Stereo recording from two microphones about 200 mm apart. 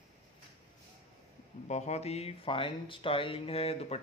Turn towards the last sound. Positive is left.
turn(degrees=30)  # may be behind; listen again after turning